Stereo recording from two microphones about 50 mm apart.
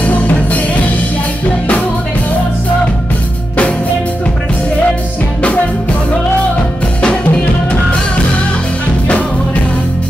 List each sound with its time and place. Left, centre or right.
0.0 s music: left
7.0 s music: left